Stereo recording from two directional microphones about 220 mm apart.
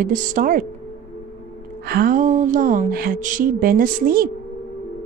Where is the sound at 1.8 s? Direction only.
40° right (ahead or behind).